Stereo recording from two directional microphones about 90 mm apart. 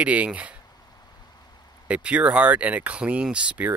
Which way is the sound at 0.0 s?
15° right (ahead or behind).